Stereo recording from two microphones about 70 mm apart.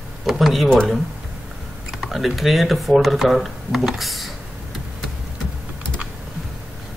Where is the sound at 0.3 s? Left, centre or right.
Centre.